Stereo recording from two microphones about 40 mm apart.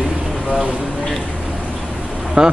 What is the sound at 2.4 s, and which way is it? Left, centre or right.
Speech, right.